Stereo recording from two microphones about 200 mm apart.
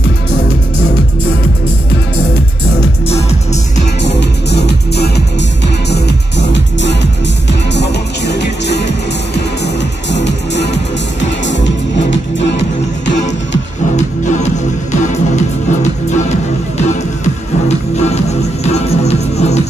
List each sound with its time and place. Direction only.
4.0 s music: 60° left (ahead or behind)
6.5 s music: 60° left (ahead or behind)
10.1 s music: 60° left (ahead or behind)
13.9 s music: 35° left (ahead or behind)
17.6 s music: 35° left (ahead or behind)